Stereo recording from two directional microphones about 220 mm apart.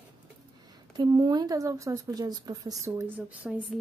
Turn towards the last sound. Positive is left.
turn(degrees=-5)  # may be behind; listen again after turning